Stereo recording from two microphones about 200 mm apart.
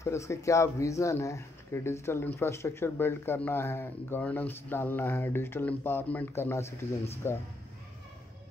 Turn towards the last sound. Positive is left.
turn(degrees=10)  # may be behind; listen again after turning